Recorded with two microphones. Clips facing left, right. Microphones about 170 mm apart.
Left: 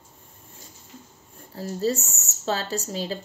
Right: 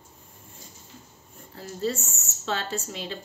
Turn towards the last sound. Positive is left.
turn(degrees=35)  # may be behind; listen again after turning